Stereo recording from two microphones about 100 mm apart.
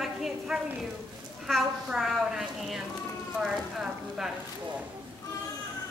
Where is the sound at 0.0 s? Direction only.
Centre (ahead or behind).